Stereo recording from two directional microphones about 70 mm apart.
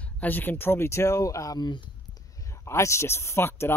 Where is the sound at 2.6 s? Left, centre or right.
Left.